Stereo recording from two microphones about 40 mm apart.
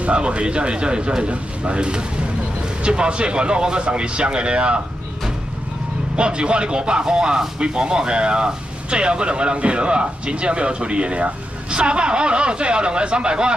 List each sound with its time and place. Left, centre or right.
0.0 s speech: right
6.1 s speech: right